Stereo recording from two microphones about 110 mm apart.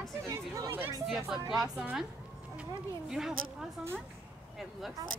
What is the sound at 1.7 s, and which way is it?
Speech, 10° right (ahead or behind).